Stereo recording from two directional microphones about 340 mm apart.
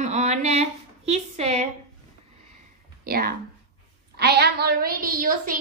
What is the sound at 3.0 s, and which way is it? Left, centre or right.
A woman's voice, right.